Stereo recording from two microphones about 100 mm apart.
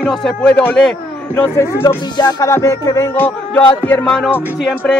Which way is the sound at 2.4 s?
30° left (ahead or behind).